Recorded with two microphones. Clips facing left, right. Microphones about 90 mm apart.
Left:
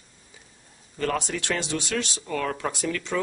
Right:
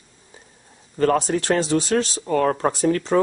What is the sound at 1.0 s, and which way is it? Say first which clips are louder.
Speech: right 8 dB; 40° right (ahead or behind).